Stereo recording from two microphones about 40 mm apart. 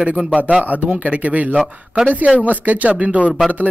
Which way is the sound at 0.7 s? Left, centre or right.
Right.